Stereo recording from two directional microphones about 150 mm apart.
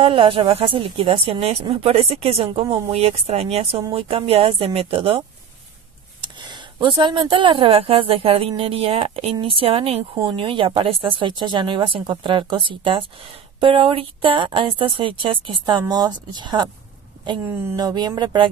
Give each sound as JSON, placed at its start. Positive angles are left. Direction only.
{"t": 0.0, "sound": "speech", "side_deg": -35}
{"t": 6.2, "sound": "speech", "side_deg": -30}